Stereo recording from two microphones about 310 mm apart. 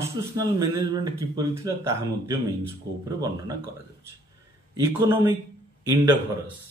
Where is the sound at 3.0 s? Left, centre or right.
Centre.